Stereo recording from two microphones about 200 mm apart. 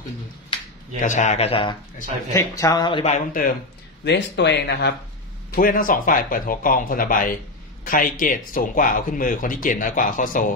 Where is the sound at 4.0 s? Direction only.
60° left (ahead or behind).